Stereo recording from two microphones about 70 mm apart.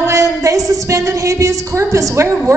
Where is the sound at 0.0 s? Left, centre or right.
Right.